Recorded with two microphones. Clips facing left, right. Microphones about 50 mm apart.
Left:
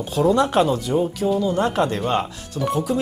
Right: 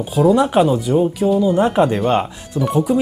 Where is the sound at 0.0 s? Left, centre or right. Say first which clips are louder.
Right 4 dB; centre.